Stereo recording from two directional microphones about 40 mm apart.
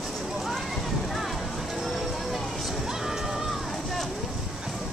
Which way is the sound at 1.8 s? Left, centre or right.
Centre.